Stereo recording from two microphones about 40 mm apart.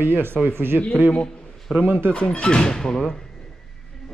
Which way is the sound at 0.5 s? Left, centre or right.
Right.